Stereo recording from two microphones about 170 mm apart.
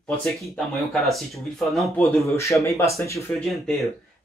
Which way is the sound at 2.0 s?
15° left (ahead or behind).